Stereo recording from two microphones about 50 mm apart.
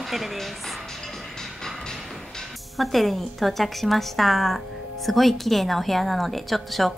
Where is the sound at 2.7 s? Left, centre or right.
Centre.